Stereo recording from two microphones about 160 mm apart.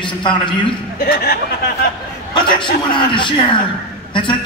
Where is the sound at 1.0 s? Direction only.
85° left.